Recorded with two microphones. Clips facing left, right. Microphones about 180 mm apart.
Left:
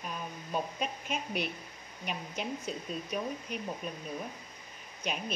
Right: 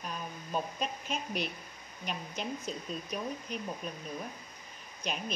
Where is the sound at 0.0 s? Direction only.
5° left (ahead or behind).